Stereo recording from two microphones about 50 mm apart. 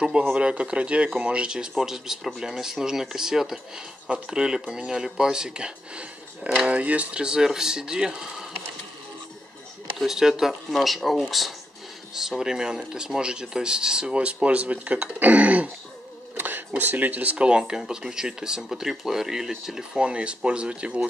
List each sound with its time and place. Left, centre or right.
0.3 s speech: right
9.9 s speech: centre